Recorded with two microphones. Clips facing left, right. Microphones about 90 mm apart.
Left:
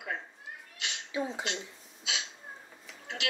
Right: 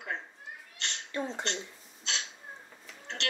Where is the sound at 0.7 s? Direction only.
5° left (ahead or behind).